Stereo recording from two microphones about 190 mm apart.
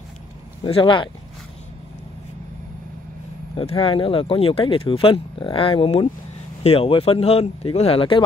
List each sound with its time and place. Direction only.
0.7 s speech: 30° left (ahead or behind)
3.5 s speech: 30° left (ahead or behind)